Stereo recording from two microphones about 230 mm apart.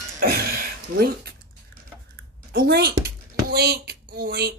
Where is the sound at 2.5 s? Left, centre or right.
Right.